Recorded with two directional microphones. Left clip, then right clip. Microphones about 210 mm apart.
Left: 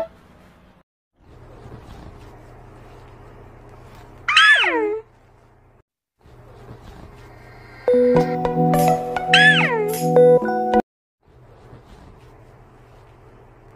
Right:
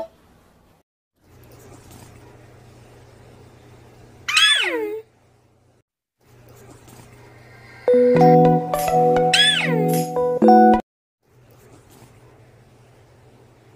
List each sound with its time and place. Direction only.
4.3 s cat: centre (ahead or behind)
7.8 s music: centre (ahead or behind)